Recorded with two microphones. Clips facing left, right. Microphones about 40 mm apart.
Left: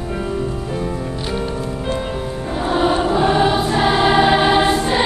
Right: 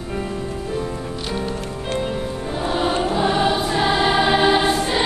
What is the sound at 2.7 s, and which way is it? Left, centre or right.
Music, centre.